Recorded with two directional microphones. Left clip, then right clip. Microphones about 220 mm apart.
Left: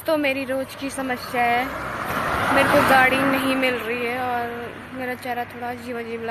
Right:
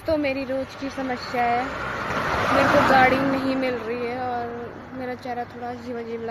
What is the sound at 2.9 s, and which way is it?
Speech, centre (ahead or behind).